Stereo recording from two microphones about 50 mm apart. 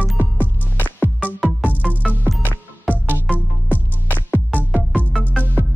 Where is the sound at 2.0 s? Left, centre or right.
Centre.